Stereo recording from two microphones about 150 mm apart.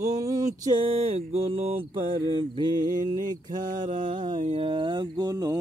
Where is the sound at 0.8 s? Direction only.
40° right (ahead or behind); by 5.6 s 25° right (ahead or behind).